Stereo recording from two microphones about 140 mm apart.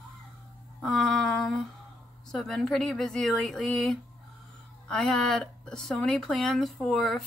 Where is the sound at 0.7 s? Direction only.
5° left (ahead or behind).